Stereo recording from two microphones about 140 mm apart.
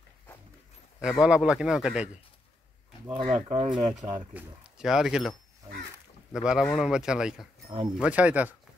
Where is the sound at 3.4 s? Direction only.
50° right (ahead or behind).